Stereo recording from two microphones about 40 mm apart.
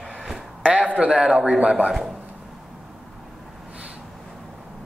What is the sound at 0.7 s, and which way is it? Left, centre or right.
Speech, right.